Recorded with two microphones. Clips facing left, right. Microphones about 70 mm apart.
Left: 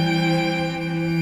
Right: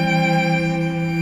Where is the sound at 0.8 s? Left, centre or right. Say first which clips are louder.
Right 3 dB; centre.